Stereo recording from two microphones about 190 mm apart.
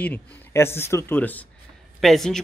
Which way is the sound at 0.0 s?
10° left (ahead or behind).